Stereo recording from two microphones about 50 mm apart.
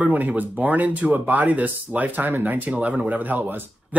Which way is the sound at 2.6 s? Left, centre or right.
Right.